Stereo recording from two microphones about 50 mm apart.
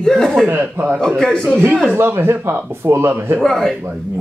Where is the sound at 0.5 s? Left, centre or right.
Right.